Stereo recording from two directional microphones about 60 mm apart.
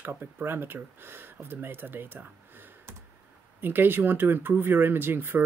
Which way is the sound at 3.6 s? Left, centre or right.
Right.